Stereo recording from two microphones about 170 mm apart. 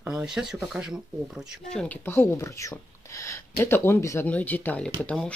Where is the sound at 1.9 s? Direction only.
15° left (ahead or behind).